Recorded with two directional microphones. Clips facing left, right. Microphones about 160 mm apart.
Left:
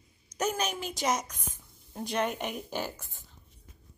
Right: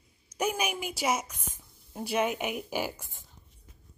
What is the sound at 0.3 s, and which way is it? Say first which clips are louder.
A woman's voice: right 1 dB; 10° right (ahead or behind).